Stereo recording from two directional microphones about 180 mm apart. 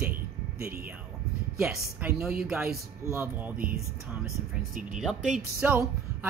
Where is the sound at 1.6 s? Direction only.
10° right (ahead or behind).